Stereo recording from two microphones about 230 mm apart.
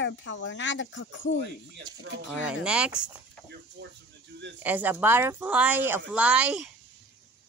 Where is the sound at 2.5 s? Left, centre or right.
Centre.